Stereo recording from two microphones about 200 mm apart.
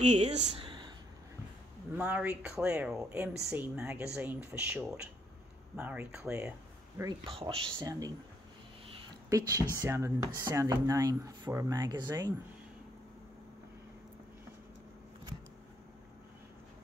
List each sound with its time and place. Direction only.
0.0 s speech: 35° right (ahead or behind)
0.7 s whispering: 20° right (ahead or behind)
2.0 s speech: 5° right (ahead or behind)
7.2 s speech: 25° right (ahead or behind)
9.5 s speech: 15° right (ahead or behind)